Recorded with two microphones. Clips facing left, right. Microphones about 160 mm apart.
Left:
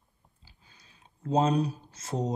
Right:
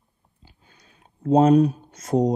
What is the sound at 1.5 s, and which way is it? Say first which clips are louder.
Speech: right 11 dB; 30° left (ahead or behind).